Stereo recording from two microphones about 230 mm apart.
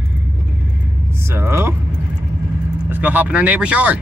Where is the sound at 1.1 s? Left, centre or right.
Centre.